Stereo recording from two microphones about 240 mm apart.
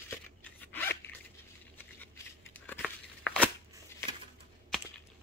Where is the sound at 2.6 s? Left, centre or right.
Centre.